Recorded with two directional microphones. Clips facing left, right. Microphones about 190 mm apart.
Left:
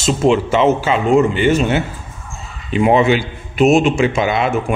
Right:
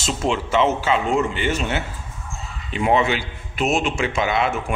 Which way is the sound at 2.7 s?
10° left (ahead or behind).